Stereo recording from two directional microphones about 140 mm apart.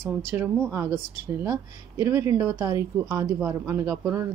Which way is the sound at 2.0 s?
20° right (ahead or behind).